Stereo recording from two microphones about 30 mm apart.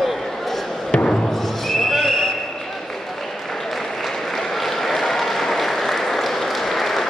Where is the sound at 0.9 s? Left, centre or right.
Left.